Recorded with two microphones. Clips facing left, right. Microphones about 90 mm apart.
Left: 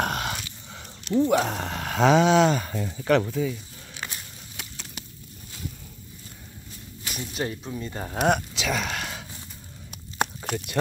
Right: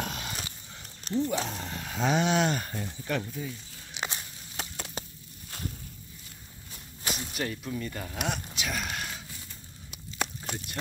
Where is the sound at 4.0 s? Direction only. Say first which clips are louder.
Right 2 dB; 20° right (ahead or behind).